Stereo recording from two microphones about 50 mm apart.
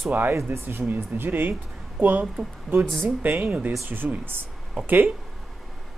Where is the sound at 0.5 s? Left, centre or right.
Right.